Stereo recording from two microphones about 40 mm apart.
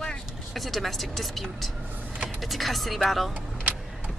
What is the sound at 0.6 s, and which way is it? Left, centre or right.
A woman's voice, centre.